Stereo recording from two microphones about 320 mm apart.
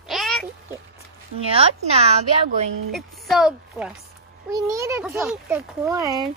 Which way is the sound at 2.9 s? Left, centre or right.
Centre.